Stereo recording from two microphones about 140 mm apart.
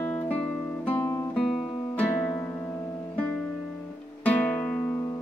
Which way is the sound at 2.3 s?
20° left (ahead or behind).